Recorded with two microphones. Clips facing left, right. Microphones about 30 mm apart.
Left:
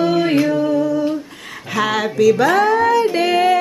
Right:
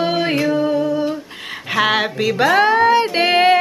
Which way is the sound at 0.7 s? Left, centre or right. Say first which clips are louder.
Left 1 dB; right.